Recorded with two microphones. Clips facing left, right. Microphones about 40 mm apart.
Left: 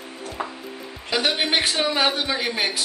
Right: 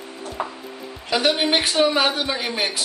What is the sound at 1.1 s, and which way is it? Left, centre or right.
Speech, centre.